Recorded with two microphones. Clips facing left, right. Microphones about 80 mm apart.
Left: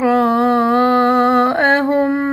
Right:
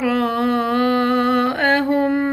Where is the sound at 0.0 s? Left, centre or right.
Left.